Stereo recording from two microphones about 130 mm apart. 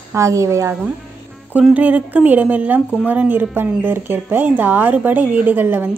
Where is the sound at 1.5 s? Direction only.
10° right (ahead or behind).